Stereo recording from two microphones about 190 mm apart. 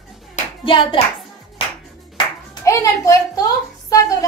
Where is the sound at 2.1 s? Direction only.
20° left (ahead or behind).